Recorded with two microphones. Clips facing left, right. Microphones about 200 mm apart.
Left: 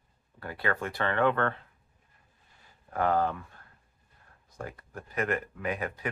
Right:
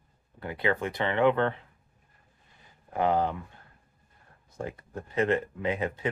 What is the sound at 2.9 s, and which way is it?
Speech, 20° right (ahead or behind).